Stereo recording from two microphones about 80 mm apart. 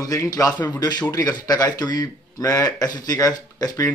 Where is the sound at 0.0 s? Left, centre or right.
Left.